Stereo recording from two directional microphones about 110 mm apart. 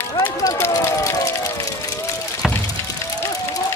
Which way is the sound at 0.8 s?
30° left (ahead or behind).